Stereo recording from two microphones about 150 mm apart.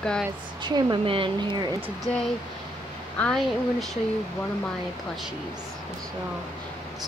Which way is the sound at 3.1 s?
5° left (ahead or behind).